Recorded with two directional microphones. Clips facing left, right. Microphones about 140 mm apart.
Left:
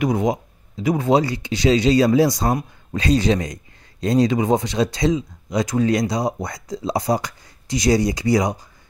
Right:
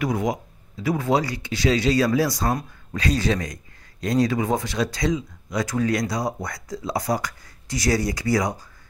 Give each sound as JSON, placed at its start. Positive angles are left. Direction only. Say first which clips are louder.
{"t": 0.0, "sound": "speech", "louder": "left 4 dB", "side_deg": 20}